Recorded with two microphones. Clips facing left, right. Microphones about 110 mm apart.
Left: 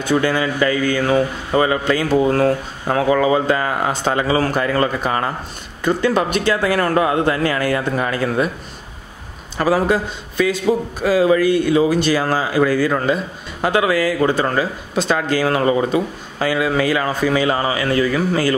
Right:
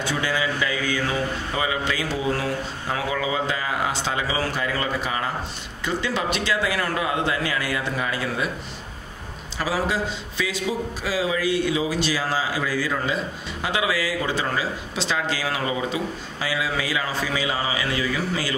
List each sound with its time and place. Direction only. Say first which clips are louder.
0.0 s a man's voice: left 7 dB; 50° left (ahead or behind)
9.6 s a man's voice: left 8 dB; 50° left (ahead or behind)